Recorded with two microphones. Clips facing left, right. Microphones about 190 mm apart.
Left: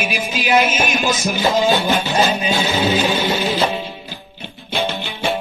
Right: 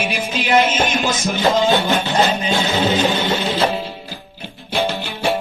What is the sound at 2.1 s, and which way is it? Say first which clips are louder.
Music: even; 15° left (ahead or behind).